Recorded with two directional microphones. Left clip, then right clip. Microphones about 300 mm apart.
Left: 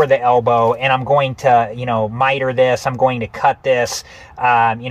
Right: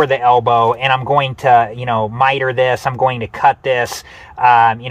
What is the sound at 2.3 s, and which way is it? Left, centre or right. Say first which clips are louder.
Speech: even; right.